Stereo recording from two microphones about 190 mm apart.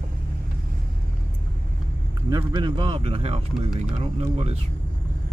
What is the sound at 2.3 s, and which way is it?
Speech, 25° right (ahead or behind).